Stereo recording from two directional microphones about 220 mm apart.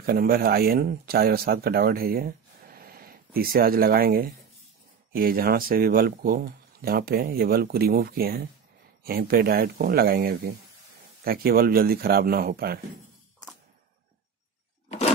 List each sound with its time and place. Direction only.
0.0 s speech: 40° right (ahead or behind)